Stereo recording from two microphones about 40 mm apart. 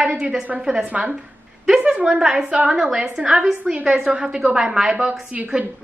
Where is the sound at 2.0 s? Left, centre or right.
Centre.